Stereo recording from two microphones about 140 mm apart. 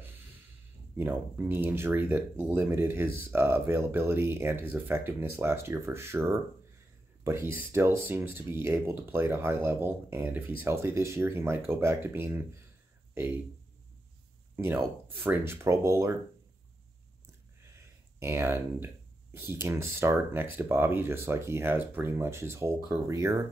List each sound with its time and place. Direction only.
0.9 s speech: 15° right (ahead or behind)
14.5 s speech: 15° right (ahead or behind)
18.2 s speech: 15° right (ahead or behind)